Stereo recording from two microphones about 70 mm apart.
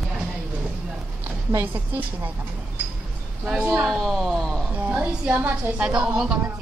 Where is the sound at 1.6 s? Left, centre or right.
Right.